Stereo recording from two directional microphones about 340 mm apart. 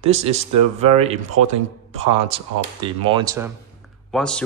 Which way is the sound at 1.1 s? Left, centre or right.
Right.